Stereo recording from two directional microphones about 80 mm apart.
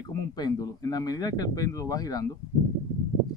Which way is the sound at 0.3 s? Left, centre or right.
Left.